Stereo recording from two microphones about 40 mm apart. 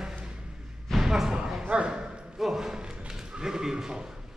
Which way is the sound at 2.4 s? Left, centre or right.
Centre.